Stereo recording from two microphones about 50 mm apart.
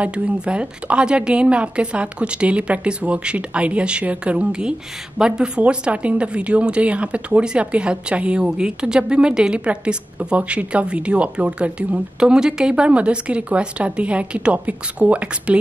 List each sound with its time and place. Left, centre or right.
0.0 s a woman's voice: right
12.2 s a woman's voice: centre